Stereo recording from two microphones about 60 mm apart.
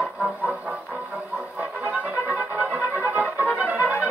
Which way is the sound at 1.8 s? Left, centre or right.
Right.